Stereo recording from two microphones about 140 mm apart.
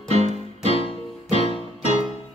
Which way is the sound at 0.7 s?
40° left (ahead or behind).